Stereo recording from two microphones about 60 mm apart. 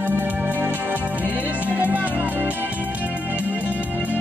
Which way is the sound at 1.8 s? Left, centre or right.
Right.